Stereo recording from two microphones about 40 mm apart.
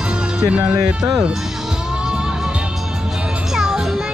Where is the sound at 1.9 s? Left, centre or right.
Right.